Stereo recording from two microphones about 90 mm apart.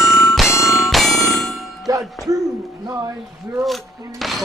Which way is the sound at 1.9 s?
40° right (ahead or behind).